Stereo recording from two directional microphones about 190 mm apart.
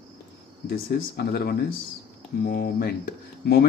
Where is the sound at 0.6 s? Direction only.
55° left (ahead or behind).